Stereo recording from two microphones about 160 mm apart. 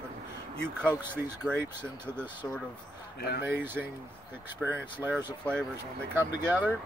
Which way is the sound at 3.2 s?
75° left (ahead or behind).